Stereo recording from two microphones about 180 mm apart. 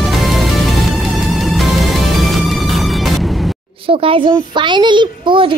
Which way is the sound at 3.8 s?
30° right (ahead or behind).